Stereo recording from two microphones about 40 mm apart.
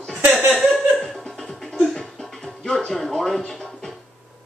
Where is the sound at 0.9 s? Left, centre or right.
Centre.